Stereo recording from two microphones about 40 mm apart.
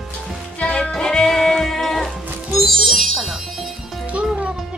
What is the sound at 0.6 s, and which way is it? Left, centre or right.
Music, left.